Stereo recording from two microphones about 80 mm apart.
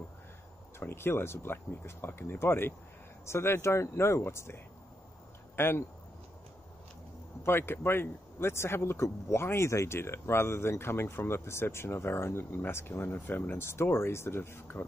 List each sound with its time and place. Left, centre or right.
0.7 s speech: left
5.6 s speech: left
7.4 s speech: left